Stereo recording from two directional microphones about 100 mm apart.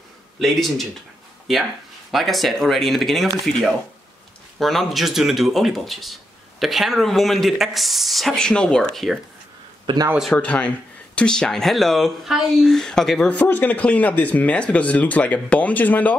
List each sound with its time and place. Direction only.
0.4 s speech: centre (ahead or behind)
2.0 s speech: centre (ahead or behind)
9.9 s a man's voice: 50° right (ahead or behind)
10.3 s speech: 10° left (ahead or behind)
13.3 s speech: 15° left (ahead or behind)